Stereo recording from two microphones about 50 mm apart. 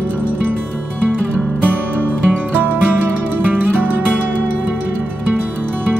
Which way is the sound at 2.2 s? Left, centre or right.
Right.